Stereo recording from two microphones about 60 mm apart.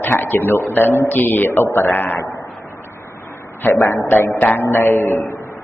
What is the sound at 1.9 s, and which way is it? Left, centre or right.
Speech, left.